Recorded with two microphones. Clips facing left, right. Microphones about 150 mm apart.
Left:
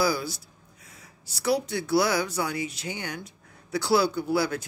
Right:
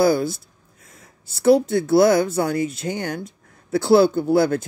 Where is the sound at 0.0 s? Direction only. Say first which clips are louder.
Right 8 dB; 50° right (ahead or behind).